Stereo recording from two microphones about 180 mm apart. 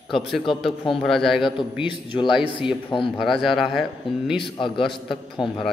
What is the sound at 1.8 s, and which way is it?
Speech, 25° left (ahead or behind).